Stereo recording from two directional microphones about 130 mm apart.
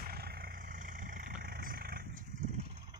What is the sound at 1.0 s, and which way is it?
Vehicle, 90° right.